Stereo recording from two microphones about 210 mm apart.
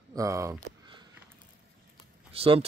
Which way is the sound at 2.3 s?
25° right (ahead or behind).